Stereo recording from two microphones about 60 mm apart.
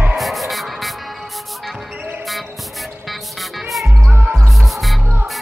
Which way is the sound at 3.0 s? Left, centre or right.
Centre.